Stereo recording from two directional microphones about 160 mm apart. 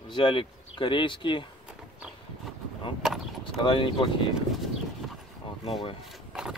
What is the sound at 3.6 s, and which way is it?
Speech, 30° left (ahead or behind).